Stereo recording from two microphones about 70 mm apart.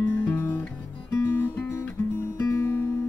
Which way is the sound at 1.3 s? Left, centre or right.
Left.